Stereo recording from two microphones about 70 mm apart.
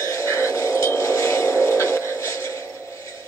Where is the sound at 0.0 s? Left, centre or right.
Left.